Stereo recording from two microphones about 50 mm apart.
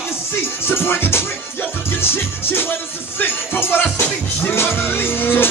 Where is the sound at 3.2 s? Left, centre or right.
Left.